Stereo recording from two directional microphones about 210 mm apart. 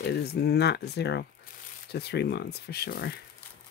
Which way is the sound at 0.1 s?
50° left (ahead or behind).